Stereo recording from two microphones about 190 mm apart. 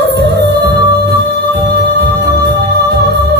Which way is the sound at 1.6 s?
60° right (ahead or behind).